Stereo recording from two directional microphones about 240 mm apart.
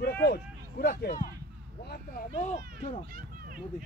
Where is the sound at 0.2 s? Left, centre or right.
Left.